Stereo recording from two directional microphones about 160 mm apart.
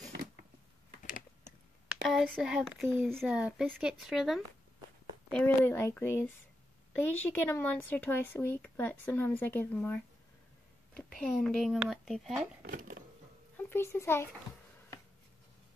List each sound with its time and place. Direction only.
0.1 s a sound: 85° right
2.0 s speech: centre (ahead or behind)
5.7 s speech: 15° left (ahead or behind)
11.1 s speech: 5° left (ahead or behind)
12.6 s speech: 65° right (ahead or behind)
13.6 s a child's voice: 15° left (ahead or behind)